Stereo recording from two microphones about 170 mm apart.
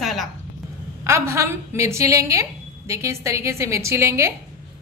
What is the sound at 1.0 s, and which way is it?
A woman's voice, 15° right (ahead or behind).